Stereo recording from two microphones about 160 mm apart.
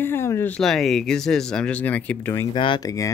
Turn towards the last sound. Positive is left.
turn(degrees=20)  # may be behind; listen again after turning